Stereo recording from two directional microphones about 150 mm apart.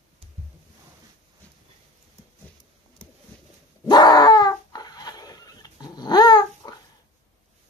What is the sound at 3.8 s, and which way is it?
Dog, 30° left (ahead or behind).